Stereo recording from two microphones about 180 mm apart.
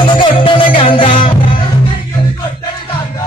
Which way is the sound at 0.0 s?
25° left (ahead or behind).